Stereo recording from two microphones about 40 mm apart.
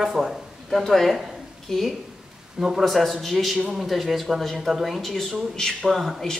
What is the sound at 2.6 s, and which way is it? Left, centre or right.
Speech, centre.